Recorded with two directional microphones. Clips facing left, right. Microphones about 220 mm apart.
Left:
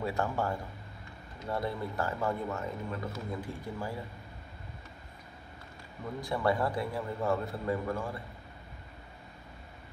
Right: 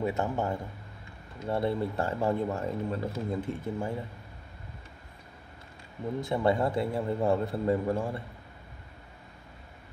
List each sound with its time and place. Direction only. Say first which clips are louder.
0.0 s speech: right 3 dB; 20° right (ahead or behind)
6.2 s speech: right 3 dB; 25° right (ahead or behind)